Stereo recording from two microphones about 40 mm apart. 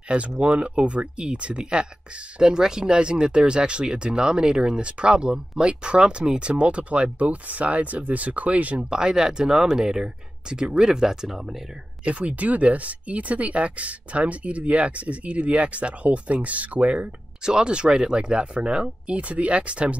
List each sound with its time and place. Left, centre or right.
0.1 s speech: right
8.9 s speech: centre
12.0 s speech: right
17.4 s speech: centre